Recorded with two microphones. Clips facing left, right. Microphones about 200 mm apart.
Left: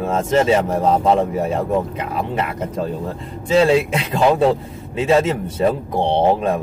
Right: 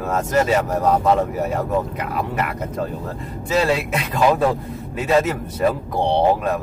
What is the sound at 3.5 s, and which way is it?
Speech, 25° left (ahead or behind).